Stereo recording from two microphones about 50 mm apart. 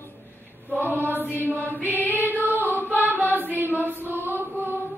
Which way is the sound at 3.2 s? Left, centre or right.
Right.